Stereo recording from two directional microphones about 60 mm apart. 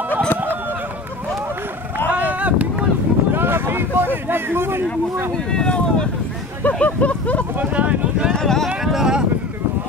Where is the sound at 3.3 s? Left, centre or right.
Right.